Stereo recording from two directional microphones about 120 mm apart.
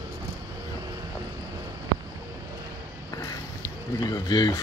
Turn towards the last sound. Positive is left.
turn(degrees=35)  # may be behind; listen again after turning